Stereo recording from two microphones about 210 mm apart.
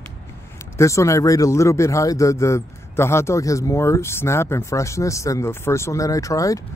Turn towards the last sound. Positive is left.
turn(degrees=15)  # may be behind; listen again after turning